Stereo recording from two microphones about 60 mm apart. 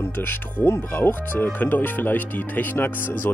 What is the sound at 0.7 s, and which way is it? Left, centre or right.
Speech, left.